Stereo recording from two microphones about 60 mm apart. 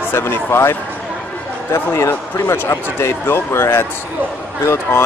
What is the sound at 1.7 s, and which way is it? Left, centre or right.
Speech, left.